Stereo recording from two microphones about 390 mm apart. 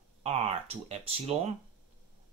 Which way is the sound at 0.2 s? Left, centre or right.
Centre.